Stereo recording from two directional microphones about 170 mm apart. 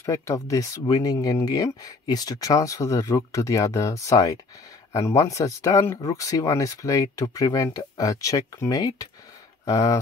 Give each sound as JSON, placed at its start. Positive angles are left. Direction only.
{"t": 0.0, "sound": "speech", "side_deg": 20}